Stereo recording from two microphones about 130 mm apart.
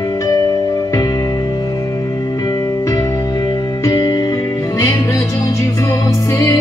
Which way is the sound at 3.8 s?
25° left (ahead or behind).